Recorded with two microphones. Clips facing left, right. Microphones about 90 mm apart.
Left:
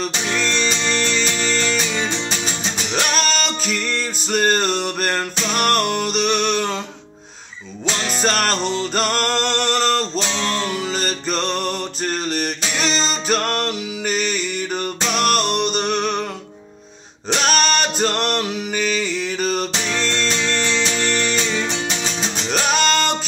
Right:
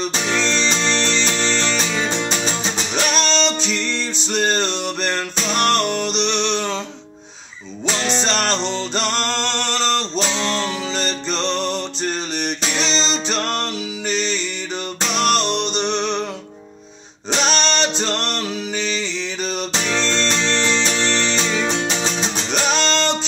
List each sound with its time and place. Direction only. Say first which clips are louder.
0.5 s music: right 1 dB; 25° right (ahead or behind)
2.0 s music: right 2 dB; 15° right (ahead or behind)
3.1 s music: right 4 dB; 5° left (ahead or behind)
8.1 s music: left 2 dB; 5° left (ahead or behind)
14.0 s music: left 1 dB; 50° left (ahead or behind)
15.1 s music: even; 5° left (ahead or behind)
17.5 s music: left 2 dB; 10° left (ahead or behind)
20.3 s music: right 1 dB; 20° right (ahead or behind)
22.5 s music: left 2 dB; 10° left (ahead or behind)